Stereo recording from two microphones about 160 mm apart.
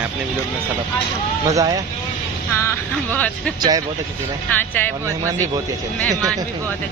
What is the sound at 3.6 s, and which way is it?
Speech, 25° right (ahead or behind).